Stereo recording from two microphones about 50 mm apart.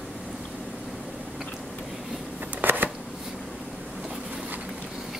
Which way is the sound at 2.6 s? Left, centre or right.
Right.